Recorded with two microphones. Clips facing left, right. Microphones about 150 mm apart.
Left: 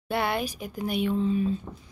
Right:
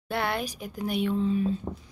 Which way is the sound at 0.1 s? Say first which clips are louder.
Left 2 dB; 5° left (ahead or behind).